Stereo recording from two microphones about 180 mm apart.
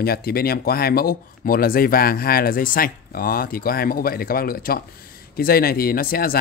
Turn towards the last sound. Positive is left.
turn(degrees=55)  # may be behind; listen again after turning